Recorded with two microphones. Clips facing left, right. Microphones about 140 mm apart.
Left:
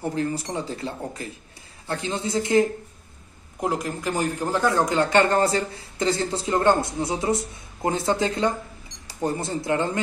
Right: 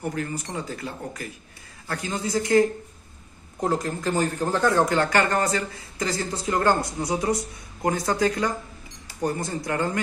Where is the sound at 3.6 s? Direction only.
10° left (ahead or behind).